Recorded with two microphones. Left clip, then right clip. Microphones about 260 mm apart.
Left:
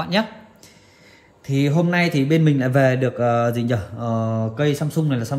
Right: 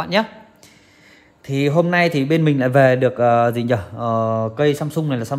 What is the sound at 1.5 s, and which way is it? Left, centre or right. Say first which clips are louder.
Speech: right 4 dB; right.